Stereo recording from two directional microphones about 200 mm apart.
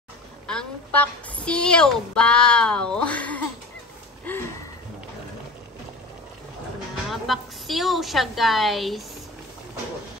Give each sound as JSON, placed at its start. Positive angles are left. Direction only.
{"t": 0.5, "sound": "a woman's voice", "side_deg": 5}
{"t": 4.3, "sound": "a sound", "side_deg": 10}
{"t": 7.1, "sound": "a woman's voice", "side_deg": 0}